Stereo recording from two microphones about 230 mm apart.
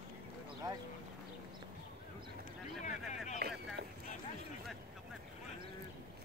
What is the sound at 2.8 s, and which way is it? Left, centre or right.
Vehicle, left.